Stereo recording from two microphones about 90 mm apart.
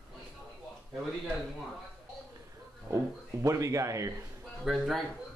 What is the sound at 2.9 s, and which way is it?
A man's voice, 35° right (ahead or behind).